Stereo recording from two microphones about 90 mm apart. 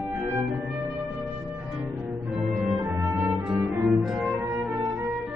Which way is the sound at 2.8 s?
15° right (ahead or behind).